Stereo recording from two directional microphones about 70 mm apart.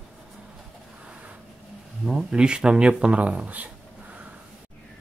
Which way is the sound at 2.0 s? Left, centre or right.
Centre.